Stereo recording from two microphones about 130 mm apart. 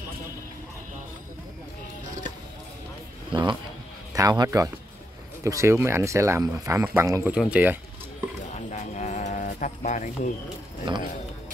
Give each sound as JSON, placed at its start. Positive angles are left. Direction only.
{"t": 3.3, "sound": "speech", "side_deg": -40}
{"t": 4.1, "sound": "speech", "side_deg": -30}
{"t": 8.6, "sound": "bird", "side_deg": 65}
{"t": 10.9, "sound": "speech", "side_deg": -40}